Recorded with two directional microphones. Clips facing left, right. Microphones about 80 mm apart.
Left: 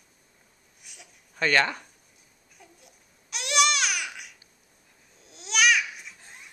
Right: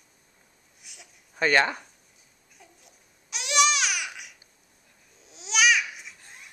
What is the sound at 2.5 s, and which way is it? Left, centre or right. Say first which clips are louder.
Babbling: left 1 dB; centre.